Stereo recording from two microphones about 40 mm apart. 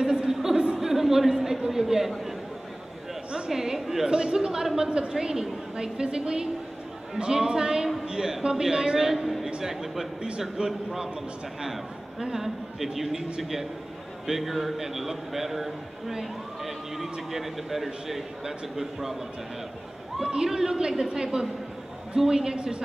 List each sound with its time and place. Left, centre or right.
0.0 s a sound: centre
1.7 s chatter: centre
3.4 s a sound: centre
4.1 s a man's voice: centre
10.6 s a man's voice: right
20.4 s a man's voice: centre